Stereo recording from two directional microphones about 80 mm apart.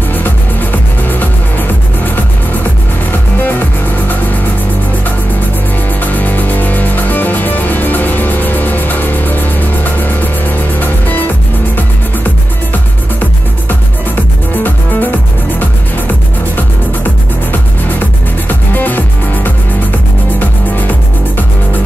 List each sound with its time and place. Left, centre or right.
0.1 s music: left
5.9 s music: left
13.7 s music: left
18.5 s music: left